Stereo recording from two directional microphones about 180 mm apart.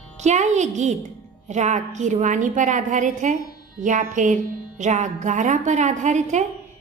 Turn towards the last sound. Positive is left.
turn(degrees=-40)  # may be behind; listen again after turning